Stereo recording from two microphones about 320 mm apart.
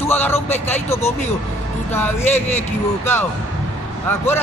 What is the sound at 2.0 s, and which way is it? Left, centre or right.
Speech, centre.